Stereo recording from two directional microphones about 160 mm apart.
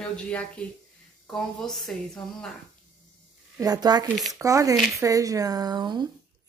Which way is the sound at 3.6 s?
25° right (ahead or behind).